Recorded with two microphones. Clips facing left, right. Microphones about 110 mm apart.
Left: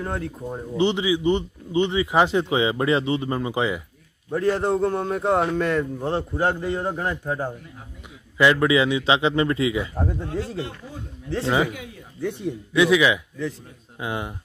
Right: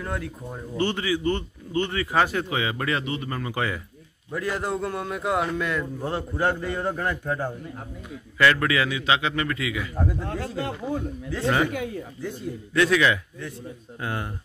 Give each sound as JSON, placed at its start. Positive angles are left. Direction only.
{"t": 0.0, "sound": "a man's voice", "side_deg": 30}
{"t": 4.3, "sound": "a man's voice", "side_deg": 30}
{"t": 5.9, "sound": "a man's voice", "side_deg": 25}
{"t": 10.2, "sound": "speech", "side_deg": -60}
{"t": 11.2, "sound": "a man's voice", "side_deg": 30}
{"t": 11.7, "sound": "speech", "side_deg": -50}
{"t": 12.2, "sound": "a man's voice", "side_deg": 70}
{"t": 12.7, "sound": "a man's voice", "side_deg": 15}